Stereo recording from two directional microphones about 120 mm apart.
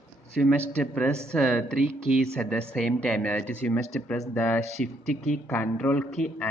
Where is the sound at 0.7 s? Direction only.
10° left (ahead or behind).